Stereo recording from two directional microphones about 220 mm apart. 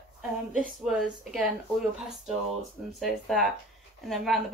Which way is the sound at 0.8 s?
Centre (ahead or behind).